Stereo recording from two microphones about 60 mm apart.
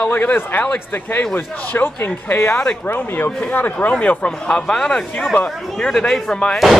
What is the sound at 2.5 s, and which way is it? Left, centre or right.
Speech, centre.